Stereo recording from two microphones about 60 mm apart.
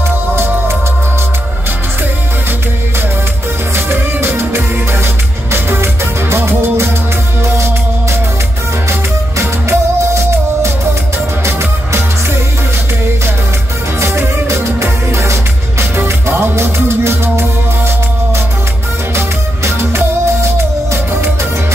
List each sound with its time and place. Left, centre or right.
3.7 s music: right
9.4 s music: right
14.5 s music: right
19.1 s music: right